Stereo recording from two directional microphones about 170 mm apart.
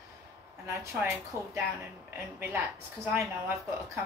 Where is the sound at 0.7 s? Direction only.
15° right (ahead or behind).